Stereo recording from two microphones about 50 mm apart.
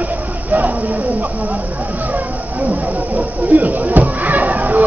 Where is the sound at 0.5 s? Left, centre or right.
Right.